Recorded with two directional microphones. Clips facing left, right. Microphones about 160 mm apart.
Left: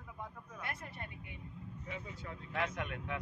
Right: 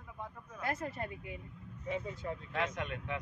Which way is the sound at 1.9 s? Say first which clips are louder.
Right 9 dB; 30° right (ahead or behind).